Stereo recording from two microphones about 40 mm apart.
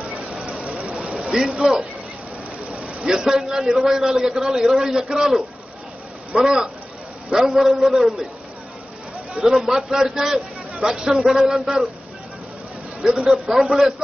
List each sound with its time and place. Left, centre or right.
0.3 s a sound: right
1.0 s a sound: centre
1.5 s a man's voice: centre
3.0 s a man's voice: centre
6.3 s a man's voice: centre
9.6 s a man's voice: centre
13.1 s a man's voice: centre